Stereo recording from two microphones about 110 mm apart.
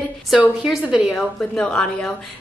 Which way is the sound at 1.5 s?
10° left (ahead or behind).